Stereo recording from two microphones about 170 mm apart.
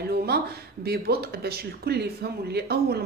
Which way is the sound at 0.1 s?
65° right (ahead or behind).